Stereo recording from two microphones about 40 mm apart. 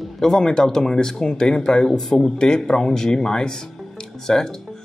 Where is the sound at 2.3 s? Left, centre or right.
Centre.